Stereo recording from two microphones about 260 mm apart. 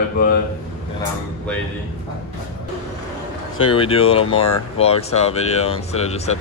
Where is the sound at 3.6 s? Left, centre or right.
Left.